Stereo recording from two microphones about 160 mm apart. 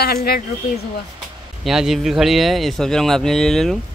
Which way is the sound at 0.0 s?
75° left (ahead or behind).